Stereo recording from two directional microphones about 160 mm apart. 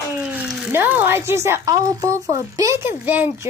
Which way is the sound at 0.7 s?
10° right (ahead or behind).